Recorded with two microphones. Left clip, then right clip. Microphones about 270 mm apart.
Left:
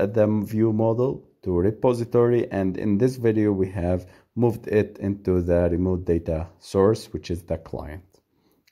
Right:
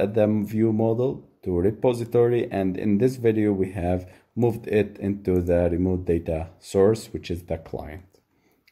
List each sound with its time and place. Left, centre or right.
0.0 s speech: left